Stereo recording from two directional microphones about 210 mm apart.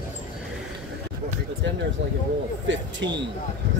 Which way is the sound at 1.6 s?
60° right (ahead or behind).